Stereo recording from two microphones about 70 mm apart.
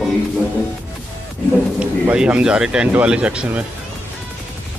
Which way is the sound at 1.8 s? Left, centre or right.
Centre.